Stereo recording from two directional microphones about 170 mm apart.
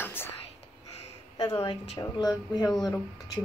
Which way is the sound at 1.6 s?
30° left (ahead or behind).